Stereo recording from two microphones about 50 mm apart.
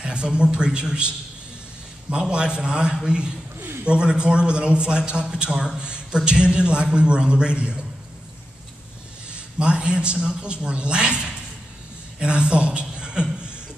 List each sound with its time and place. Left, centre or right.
0.0 s a man's voice: centre
9.3 s a man's voice: centre